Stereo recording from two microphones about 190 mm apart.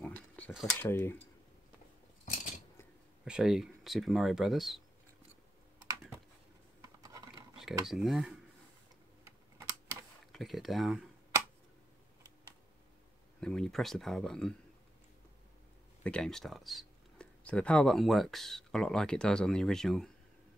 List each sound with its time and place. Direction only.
0.0 s a sound: 5° left (ahead or behind)
0.8 s speech: 10° left (ahead or behind)
3.3 s speech: 5° right (ahead or behind)
7.0 s scratch: 20° right (ahead or behind)
7.8 s speech: centre (ahead or behind)
10.2 s speech: centre (ahead or behind)
13.4 s speech: 5° left (ahead or behind)
16.0 s speech: 5° left (ahead or behind)